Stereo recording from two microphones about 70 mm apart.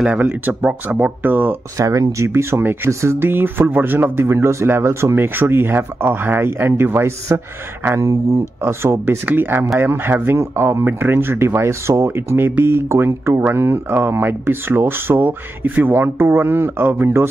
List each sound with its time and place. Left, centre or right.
0.0 s speech: right
1.8 s speech: right
3.2 s speech: right
8.0 s speech: right
8.6 s speech: right